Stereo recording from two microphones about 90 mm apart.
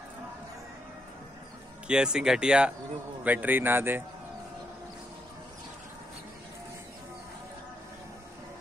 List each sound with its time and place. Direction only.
1.9 s a man's voice: 10° right (ahead or behind); by 4.0 s 25° right (ahead or behind)